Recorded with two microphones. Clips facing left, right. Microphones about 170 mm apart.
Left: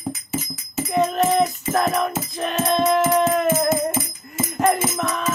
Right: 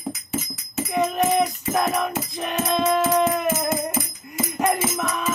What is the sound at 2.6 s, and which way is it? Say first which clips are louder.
Music: left 2 dB; centre (ahead or behind).